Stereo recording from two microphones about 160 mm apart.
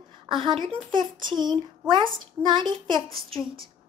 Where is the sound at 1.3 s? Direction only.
30° right (ahead or behind).